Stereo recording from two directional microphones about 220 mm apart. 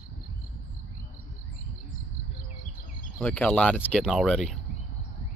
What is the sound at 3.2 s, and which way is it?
Speech, 10° left (ahead or behind).